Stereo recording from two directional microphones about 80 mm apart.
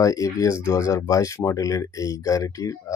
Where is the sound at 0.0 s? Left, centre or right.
Left.